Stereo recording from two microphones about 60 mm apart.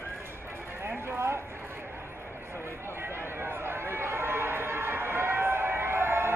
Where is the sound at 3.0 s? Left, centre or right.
Right.